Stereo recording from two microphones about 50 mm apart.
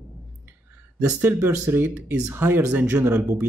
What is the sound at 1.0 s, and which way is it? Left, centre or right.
Speech, right.